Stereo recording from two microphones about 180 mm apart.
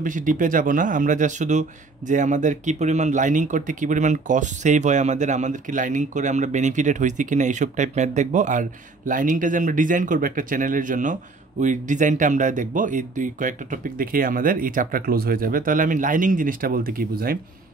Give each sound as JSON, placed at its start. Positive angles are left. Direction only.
{"t": 0.0, "sound": "speech", "side_deg": -45}